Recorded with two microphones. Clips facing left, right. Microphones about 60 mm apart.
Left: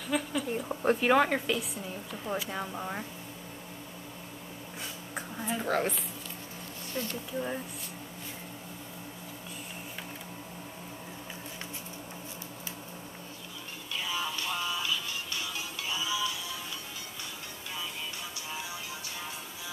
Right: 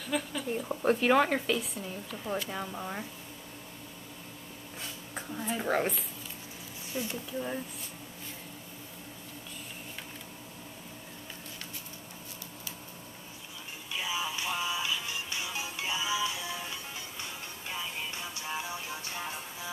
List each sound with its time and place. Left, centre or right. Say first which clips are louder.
0.1 s a woman's voice: left 2 dB; centre
5.1 s speech: even; centre
5.6 s speech: even; centre
7.3 s speech: left 1 dB; centre
13.9 s music: even; centre
18.5 s music: right 4 dB; right